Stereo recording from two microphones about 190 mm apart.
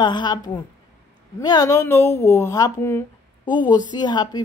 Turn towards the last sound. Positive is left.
turn(degrees=20)  # may be behind; listen again after turning